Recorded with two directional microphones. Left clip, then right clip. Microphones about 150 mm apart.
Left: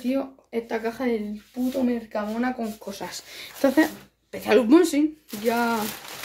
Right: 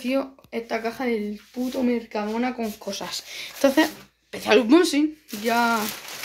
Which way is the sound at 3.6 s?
10° left (ahead or behind).